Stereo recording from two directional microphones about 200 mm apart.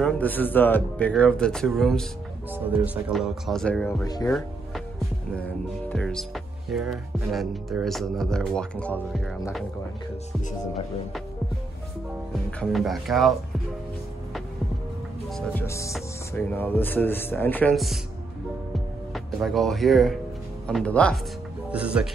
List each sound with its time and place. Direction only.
0.0 s music: 10° left (ahead or behind)
4.0 s speech: 20° left (ahead or behind)
5.9 s music: centre (ahead or behind)
12.4 s music: 5° left (ahead or behind)
15.2 s speech: centre (ahead or behind)
15.6 s speech: 15° left (ahead or behind)
19.1 s speech: centre (ahead or behind)
20.6 s music: 5° left (ahead or behind)
21.6 s speech: 5° right (ahead or behind)